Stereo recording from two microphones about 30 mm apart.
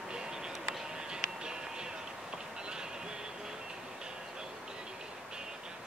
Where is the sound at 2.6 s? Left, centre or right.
Right.